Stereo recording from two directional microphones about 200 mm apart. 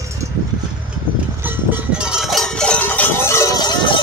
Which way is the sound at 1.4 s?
10° right (ahead or behind).